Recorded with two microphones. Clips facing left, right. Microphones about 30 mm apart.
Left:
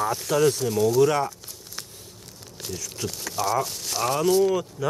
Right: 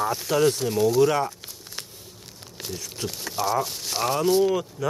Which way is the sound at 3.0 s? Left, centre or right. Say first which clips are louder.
Even; centre.